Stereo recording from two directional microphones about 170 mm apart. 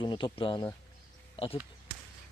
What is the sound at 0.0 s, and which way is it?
Speech, 30° left (ahead or behind).